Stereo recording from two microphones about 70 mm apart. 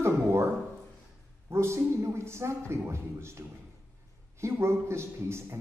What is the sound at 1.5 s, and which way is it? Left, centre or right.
A man's voice, right.